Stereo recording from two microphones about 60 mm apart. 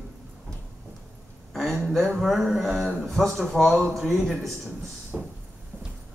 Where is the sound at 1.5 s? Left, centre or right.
Centre.